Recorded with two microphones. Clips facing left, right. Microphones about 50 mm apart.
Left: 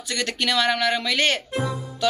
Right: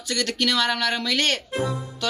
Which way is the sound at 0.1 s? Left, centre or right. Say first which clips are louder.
Even; left.